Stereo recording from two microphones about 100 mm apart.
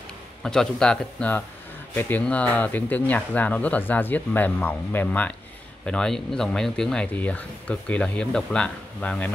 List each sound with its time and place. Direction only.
0.4 s speech: 5° left (ahead or behind)
2.0 s speech: 15° left (ahead or behind)